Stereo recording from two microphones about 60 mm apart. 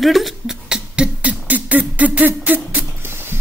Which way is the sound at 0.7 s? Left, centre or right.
Centre.